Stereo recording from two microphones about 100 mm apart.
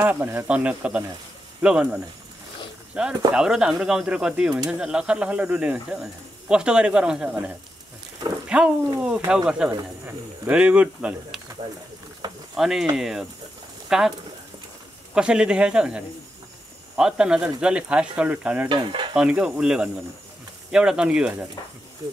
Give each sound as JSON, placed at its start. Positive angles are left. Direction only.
{"t": 0.0, "sound": "speech", "side_deg": -20}
{"t": 12.2, "sound": "a sound", "side_deg": -45}
{"t": 12.5, "sound": "speech", "side_deg": -5}
{"t": 15.1, "sound": "speech", "side_deg": -10}
{"t": 18.7, "sound": "stir", "side_deg": -55}
{"t": 19.1, "sound": "speech", "side_deg": -10}